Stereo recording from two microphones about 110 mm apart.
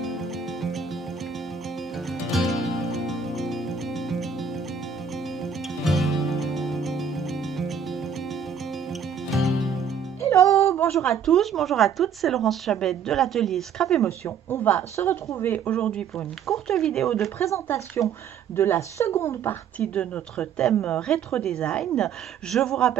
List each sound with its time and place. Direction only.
0.0 s music: centre (ahead or behind)
2.0 s music: centre (ahead or behind)
9.3 s music: centre (ahead or behind)
10.2 s music: 25° left (ahead or behind)
11.0 s speech: 5° left (ahead or behind)
14.2 s speech: 20° left (ahead or behind)
17.4 s speech: 25° left (ahead or behind)
19.8 s speech: 10° left (ahead or behind)